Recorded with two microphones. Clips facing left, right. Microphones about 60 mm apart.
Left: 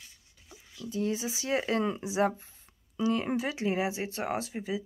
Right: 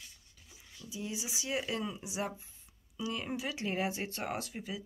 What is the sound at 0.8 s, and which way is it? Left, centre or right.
Speech, left.